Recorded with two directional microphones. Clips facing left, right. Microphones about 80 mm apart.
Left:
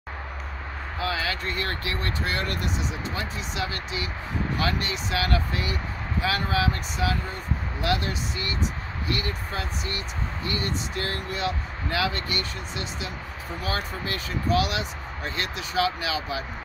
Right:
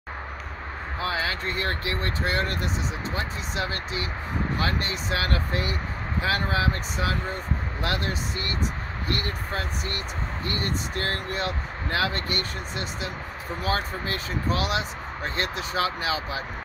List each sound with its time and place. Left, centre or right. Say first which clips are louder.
1.0 s speech: even; right
9.1 s speech: even; right
13.7 s speech: right 2 dB; right